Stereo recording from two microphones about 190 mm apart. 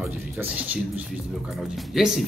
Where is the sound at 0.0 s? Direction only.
5° right (ahead or behind).